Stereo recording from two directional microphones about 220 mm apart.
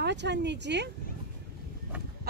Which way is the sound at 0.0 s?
50° right (ahead or behind).